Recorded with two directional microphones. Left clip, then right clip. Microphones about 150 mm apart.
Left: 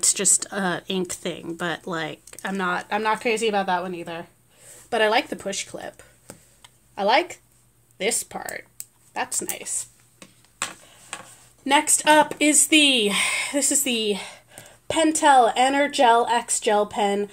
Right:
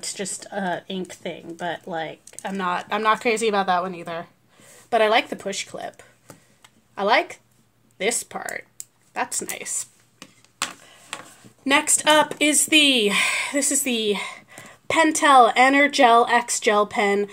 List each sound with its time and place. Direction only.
0.0 s speech: 50° left (ahead or behind)
2.4 s speech: 20° left (ahead or behind)
2.7 s speech: 5° left (ahead or behind)
3.0 s a woman's voice: 10° right (ahead or behind)
4.8 s speech: 5° right (ahead or behind)
11.6 s a woman's voice: 10° right (ahead or behind)